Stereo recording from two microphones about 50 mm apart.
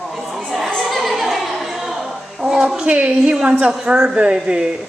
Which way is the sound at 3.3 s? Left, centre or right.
Right.